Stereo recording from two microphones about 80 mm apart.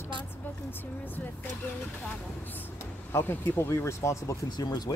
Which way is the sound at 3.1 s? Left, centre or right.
Left.